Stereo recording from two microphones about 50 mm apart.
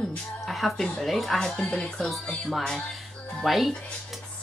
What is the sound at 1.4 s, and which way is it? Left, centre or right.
Speech, centre.